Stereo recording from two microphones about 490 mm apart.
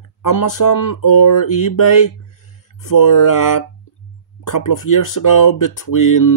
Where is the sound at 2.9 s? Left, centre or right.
Left.